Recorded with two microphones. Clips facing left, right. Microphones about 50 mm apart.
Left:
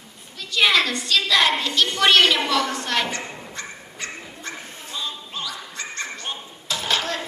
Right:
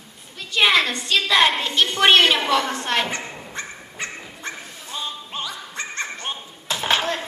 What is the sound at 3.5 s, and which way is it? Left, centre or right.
Dog, right.